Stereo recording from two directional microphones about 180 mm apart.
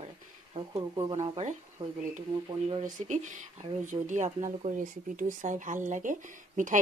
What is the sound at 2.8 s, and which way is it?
Speech, 45° right (ahead or behind).